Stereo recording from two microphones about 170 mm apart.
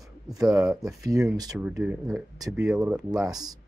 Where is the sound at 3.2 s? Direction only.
20° right (ahead or behind).